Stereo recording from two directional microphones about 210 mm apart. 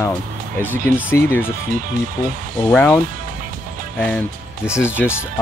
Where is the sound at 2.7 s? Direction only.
5° left (ahead or behind).